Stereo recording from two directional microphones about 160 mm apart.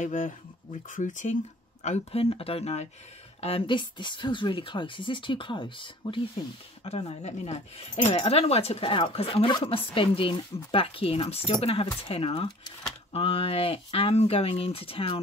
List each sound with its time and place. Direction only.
0.0 s speech: 50° left (ahead or behind)